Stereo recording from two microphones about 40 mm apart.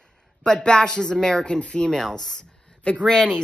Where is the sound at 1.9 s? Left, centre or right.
Centre.